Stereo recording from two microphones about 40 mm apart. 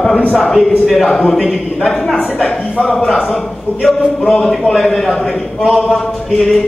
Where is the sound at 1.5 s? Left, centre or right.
Centre.